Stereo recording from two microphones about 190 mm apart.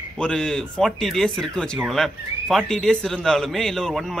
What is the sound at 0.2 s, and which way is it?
Speech, 5° left (ahead or behind).